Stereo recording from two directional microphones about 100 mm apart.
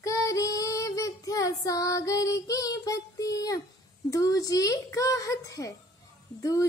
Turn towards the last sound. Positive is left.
turn(degrees=35)  # may be behind; listen again after turning